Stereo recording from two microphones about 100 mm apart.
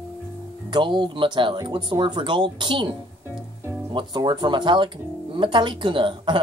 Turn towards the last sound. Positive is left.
turn(degrees=-55)  # may be behind; listen again after turning